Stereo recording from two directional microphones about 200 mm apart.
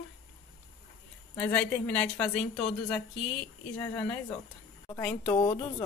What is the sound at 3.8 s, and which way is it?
A woman's voice, 10° left (ahead or behind).